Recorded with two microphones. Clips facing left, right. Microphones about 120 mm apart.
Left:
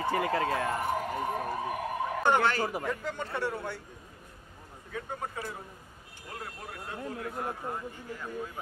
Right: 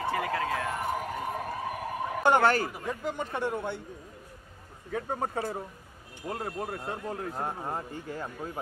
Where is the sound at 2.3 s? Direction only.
45° right (ahead or behind).